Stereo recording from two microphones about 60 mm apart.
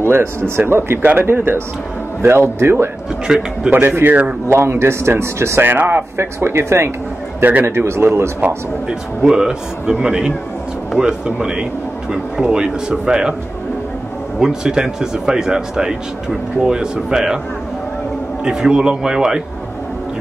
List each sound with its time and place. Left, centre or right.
0.0 s a man's voice: right
3.3 s speech: centre
3.7 s a man's voice: right
4.5 s speech: right
5.6 s speech: right
8.8 s speech: centre
14.4 s speech: centre
18.4 s speech: centre